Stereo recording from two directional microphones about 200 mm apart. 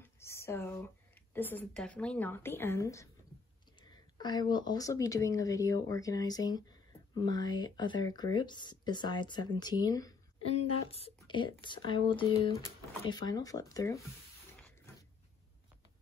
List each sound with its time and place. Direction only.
0.0 s speech: 15° left (ahead or behind)
10.7 s speech: 30° left (ahead or behind)